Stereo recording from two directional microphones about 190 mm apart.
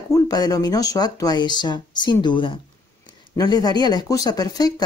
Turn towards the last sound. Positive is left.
turn(degrees=20)  # may be behind; listen again after turning